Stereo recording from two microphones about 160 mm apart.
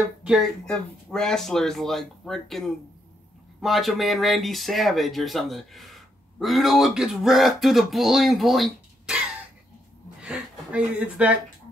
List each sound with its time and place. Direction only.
0.2 s speech: 5° right (ahead or behind)
10.2 s speech: 5° right (ahead or behind)